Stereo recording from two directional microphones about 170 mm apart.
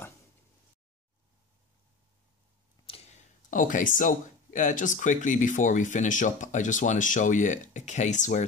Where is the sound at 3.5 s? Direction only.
50° left (ahead or behind).